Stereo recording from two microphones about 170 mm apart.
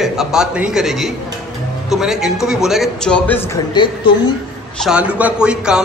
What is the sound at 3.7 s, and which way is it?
Speech, 25° left (ahead or behind).